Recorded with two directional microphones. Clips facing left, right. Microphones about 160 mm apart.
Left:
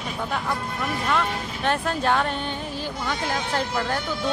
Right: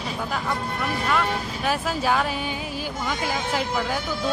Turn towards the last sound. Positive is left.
turn(degrees=-5)  # may be behind; listen again after turning